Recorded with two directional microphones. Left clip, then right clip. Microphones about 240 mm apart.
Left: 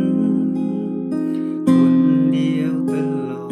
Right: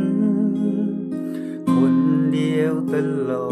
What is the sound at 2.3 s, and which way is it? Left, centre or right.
Music, centre.